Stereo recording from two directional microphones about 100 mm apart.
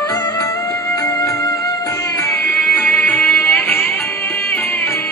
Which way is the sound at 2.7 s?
15° left (ahead or behind).